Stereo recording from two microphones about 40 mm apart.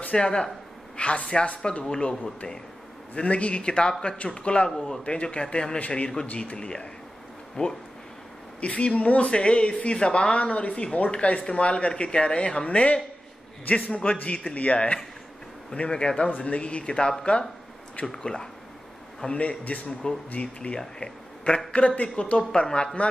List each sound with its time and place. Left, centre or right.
0.1 s a man's voice: left
3.2 s speech: left
4.6 s speech: centre
5.0 s a man's voice: left
19.2 s speech: left
21.8 s a man's voice: left
22.1 s speech: left